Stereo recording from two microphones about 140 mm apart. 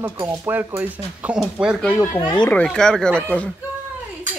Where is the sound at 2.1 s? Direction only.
30° left (ahead or behind).